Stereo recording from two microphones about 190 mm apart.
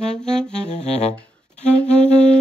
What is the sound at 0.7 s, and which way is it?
Saxophone, 35° left (ahead or behind).